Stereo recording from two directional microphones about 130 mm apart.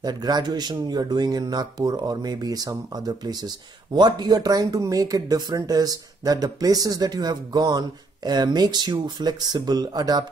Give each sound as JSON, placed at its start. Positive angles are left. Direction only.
{"t": 0.0, "sound": "speech", "side_deg": -30}